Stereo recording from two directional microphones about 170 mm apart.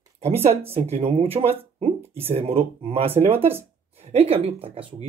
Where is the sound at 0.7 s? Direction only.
35° right (ahead or behind).